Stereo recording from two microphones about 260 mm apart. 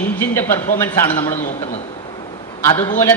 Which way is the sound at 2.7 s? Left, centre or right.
Left.